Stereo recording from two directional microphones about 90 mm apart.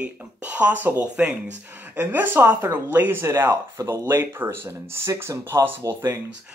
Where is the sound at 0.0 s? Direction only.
15° right (ahead or behind); by 4.0 s 35° right (ahead or behind).